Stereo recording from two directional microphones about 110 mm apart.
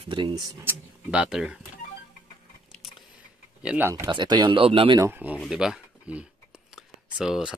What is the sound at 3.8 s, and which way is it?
Speech, 25° right (ahead or behind).